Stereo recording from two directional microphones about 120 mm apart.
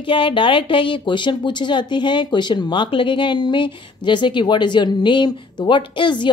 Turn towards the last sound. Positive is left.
turn(degrees=40)  # may be behind; listen again after turning